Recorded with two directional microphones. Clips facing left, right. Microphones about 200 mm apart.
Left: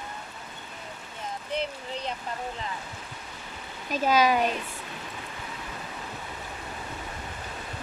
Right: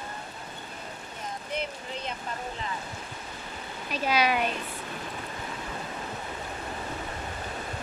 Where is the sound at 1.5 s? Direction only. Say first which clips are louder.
Left 3 dB; 30° left (ahead or behind).